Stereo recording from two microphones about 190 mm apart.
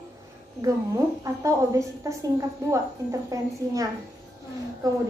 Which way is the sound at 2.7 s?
15° right (ahead or behind).